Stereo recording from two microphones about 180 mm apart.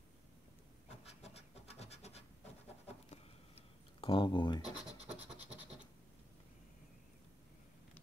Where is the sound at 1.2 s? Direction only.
35° left (ahead or behind).